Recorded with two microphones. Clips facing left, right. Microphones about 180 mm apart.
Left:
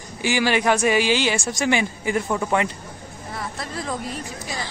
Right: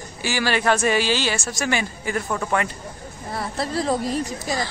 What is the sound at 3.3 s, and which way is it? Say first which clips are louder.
Speech: right 6 dB; 35° right (ahead or behind).